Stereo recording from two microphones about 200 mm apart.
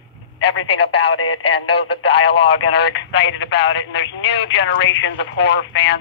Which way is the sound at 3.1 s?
60° left (ahead or behind).